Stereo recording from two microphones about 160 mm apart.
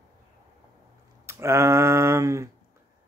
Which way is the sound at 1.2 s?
15° right (ahead or behind).